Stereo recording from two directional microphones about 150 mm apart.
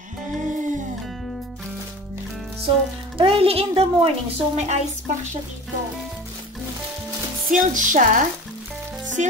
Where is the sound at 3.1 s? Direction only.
40° right (ahead or behind).